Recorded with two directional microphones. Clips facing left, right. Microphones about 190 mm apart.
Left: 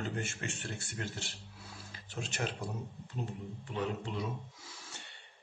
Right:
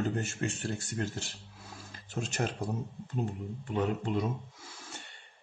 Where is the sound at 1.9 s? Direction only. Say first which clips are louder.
Right 6 dB; 45° right (ahead or behind).